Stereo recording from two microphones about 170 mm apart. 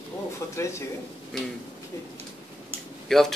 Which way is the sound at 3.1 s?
Centre (ahead or behind).